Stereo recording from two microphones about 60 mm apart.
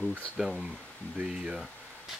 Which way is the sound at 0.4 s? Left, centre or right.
Centre.